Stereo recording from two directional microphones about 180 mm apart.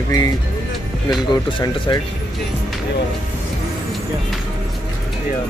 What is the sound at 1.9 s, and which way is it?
Speech, 25° left (ahead or behind).